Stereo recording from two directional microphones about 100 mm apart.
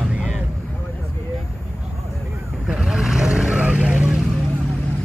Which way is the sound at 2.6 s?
5° right (ahead or behind).